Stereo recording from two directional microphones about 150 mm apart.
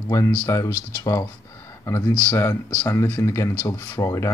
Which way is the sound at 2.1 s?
15° left (ahead or behind).